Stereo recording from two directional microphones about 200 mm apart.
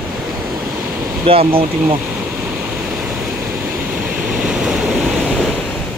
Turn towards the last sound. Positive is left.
turn(degrees=-5)  # may be behind; listen again after turning